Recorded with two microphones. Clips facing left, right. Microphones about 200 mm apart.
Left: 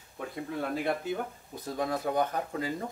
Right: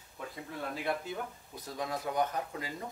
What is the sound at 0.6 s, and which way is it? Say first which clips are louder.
Speech: left 4 dB; 55° left (ahead or behind).